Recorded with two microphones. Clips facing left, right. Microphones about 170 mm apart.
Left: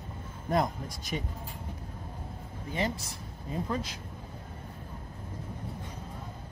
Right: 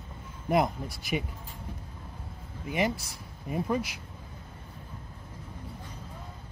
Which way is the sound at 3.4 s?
15° right (ahead or behind).